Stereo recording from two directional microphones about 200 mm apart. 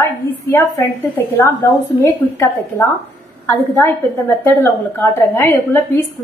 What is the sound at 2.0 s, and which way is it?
A woman's voice, 15° left (ahead or behind).